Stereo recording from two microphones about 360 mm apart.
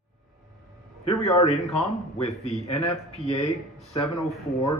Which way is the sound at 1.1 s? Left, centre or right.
Centre.